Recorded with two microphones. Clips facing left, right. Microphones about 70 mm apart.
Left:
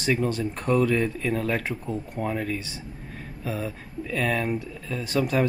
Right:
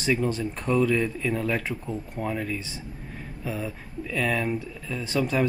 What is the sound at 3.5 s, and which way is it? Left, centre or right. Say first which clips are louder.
Speech: left 1 dB; left.